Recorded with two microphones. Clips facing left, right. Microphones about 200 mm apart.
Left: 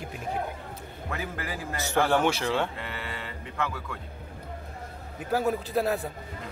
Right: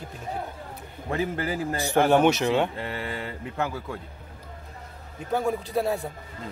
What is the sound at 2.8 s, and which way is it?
Speech, 30° right (ahead or behind).